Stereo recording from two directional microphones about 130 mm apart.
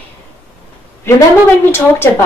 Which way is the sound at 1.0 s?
20° left (ahead or behind).